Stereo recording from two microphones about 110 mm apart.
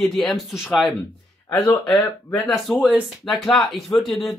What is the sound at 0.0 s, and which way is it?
Speech, centre (ahead or behind).